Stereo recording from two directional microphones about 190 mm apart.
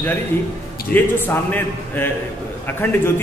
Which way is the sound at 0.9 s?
10° left (ahead or behind).